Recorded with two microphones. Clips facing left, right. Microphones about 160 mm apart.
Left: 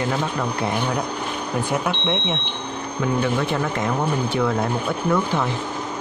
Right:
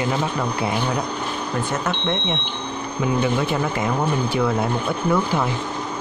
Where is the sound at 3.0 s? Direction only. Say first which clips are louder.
Right 1 dB; 10° right (ahead or behind).